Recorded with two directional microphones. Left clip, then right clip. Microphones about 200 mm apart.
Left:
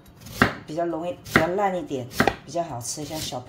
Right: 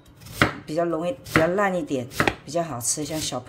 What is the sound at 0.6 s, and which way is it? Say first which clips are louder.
Chopping: right 3 dB; 35° right (ahead or behind).